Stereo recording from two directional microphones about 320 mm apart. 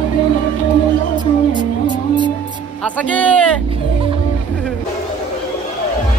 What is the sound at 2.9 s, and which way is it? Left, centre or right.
Speech, centre.